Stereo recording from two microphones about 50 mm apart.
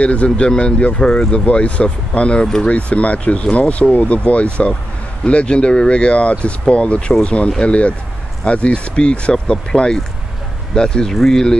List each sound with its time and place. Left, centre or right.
0.0 s speech: left
2.4 s speech: centre
2.7 s speech: left; by 11.5 s centre